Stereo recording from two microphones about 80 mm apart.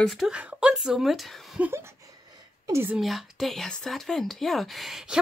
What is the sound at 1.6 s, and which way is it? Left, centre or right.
Speech, centre.